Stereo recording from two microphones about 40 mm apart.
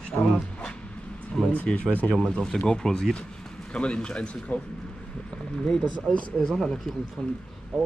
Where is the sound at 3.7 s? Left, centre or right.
Left.